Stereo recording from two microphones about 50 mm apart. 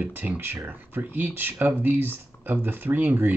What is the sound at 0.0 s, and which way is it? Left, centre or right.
Speech, right.